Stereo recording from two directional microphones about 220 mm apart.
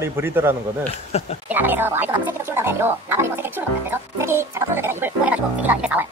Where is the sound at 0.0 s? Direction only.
10° right (ahead or behind).